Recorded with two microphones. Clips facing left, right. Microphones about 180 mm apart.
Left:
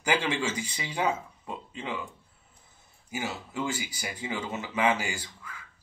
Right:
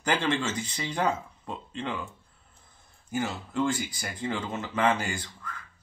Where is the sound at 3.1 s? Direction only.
5° left (ahead or behind).